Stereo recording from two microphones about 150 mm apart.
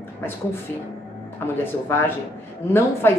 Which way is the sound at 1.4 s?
15° left (ahead or behind).